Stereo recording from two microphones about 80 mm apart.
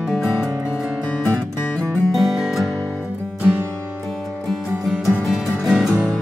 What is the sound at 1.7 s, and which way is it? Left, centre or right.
Music, centre.